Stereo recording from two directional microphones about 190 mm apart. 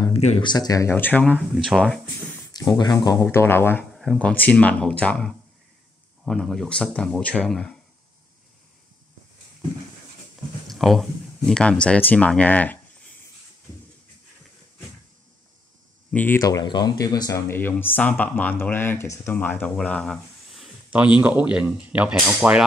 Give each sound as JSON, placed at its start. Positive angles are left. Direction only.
{"t": 0.0, "sound": "a sound", "side_deg": 35}
{"t": 0.5, "sound": "speech", "side_deg": 20}
{"t": 2.5, "sound": "speech", "side_deg": 20}
{"t": 3.9, "sound": "speech", "side_deg": 0}
{"t": 10.7, "sound": "speech", "side_deg": 0}
{"t": 16.1, "sound": "speech", "side_deg": 10}